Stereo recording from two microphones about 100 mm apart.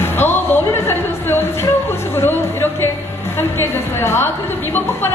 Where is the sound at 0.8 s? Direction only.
25° left (ahead or behind).